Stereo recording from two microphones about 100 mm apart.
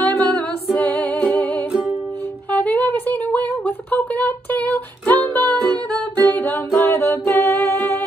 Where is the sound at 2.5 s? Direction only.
15° left (ahead or behind).